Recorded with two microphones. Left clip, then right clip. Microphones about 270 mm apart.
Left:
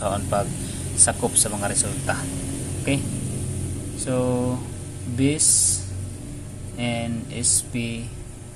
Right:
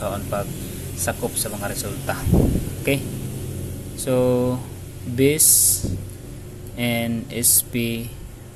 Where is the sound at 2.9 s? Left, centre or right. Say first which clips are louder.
Right 3 dB; centre.